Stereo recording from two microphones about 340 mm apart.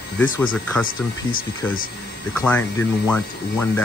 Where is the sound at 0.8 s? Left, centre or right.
Left.